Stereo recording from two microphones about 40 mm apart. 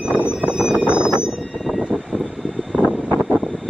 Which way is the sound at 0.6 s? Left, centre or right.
Right.